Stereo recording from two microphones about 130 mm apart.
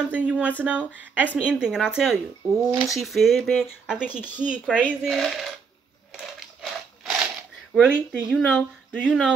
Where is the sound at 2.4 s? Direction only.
25° right (ahead or behind).